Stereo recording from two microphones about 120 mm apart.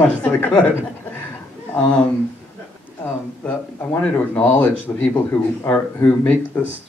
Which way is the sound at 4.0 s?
10° left (ahead or behind).